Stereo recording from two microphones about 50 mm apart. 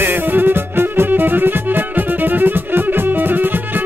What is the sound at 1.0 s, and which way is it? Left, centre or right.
Violin, right.